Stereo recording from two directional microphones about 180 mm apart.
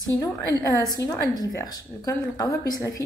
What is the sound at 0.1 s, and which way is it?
A woman's voice, 20° left (ahead or behind).